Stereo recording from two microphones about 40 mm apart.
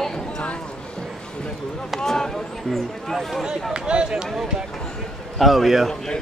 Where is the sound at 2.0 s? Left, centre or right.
Centre.